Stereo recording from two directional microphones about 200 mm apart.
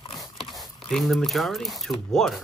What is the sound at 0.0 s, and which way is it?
Dog, 20° left (ahead or behind).